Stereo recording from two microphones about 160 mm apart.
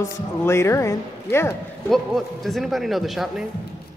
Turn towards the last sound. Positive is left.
turn(degrees=0)  # may be behind; listen again after turning